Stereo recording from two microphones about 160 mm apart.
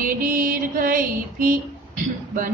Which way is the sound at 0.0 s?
60° right (ahead or behind).